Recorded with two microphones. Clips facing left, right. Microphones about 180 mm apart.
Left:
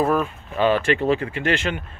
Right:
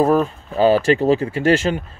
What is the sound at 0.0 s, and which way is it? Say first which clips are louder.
Speech: right 5 dB; 35° right (ahead or behind).